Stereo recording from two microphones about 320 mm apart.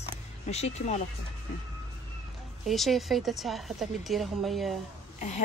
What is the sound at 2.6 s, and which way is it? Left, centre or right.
A woman's voice, centre.